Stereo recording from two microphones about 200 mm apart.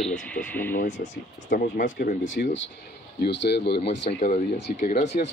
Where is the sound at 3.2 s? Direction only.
55° left (ahead or behind).